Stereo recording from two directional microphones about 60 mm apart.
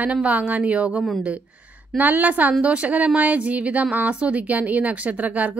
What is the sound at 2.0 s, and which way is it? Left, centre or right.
A woman's voice, right.